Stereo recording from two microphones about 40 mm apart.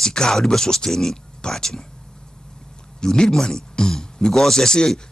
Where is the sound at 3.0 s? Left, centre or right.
Centre.